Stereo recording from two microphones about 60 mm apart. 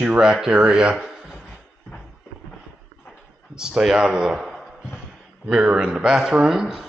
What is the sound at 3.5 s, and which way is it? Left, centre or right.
Speech, centre.